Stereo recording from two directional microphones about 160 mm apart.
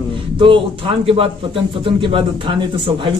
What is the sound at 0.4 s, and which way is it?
Speech, 35° right (ahead or behind).